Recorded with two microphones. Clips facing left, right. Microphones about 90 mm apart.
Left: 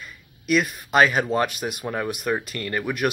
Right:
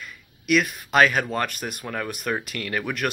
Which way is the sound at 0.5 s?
5° left (ahead or behind).